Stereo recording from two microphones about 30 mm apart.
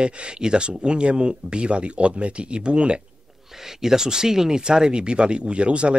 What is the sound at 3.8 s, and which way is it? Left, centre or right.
Speech, centre.